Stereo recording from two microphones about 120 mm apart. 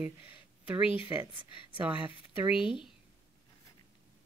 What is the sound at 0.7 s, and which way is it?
Speech, 15° right (ahead or behind).